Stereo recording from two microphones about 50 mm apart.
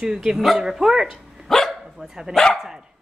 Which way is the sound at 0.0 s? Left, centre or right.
Centre.